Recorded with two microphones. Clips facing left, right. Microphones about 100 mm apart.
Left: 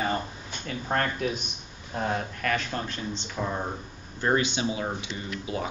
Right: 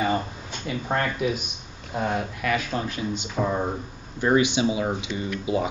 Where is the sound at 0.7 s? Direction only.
15° right (ahead or behind).